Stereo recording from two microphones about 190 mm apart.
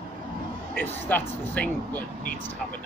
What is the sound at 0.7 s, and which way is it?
Speech, 10° left (ahead or behind).